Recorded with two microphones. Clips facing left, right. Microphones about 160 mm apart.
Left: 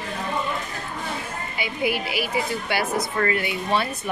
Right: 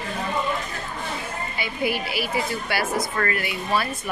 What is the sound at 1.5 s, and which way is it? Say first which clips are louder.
Speech: left 1 dB; 15° left (ahead or behind).